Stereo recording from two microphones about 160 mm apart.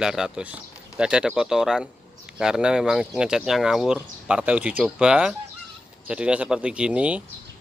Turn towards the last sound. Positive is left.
turn(degrees=-10)  # may be behind; listen again after turning